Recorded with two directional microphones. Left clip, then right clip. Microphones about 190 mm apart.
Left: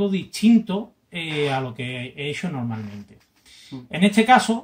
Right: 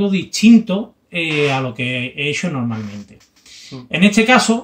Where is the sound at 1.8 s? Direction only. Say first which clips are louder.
Right 9 dB; 10° left (ahead or behind).